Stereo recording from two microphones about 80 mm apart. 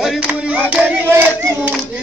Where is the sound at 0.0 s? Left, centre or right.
Centre.